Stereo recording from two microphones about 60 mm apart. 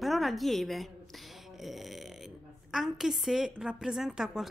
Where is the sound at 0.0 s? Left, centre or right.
Centre.